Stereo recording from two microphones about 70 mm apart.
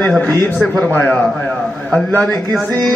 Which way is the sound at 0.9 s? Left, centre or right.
Left.